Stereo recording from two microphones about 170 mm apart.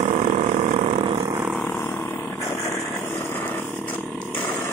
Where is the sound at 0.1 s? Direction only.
35° right (ahead or behind).